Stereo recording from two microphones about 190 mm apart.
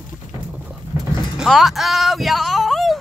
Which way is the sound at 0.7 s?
5° right (ahead or behind).